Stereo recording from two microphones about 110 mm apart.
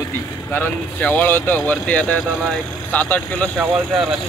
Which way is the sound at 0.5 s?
15° left (ahead or behind).